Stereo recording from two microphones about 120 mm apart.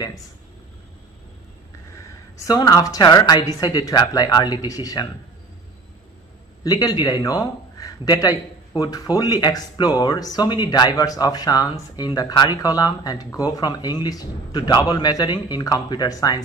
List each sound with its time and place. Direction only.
2.3 s speech: 30° left (ahead or behind)
6.6 s speech: 35° left (ahead or behind)